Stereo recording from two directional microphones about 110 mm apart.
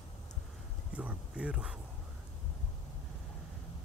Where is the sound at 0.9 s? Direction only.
10° right (ahead or behind).